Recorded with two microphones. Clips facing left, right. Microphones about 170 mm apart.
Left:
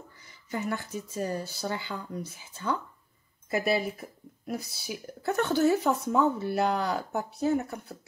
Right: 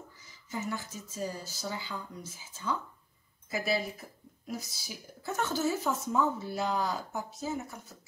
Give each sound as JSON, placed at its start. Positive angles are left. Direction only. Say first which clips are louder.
{"t": 0.2, "sound": "speech", "louder": "left 4 dB", "side_deg": 60}